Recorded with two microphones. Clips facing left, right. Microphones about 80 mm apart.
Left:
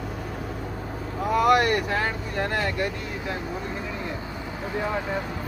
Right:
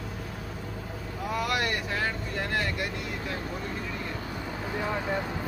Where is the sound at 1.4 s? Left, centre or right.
Left.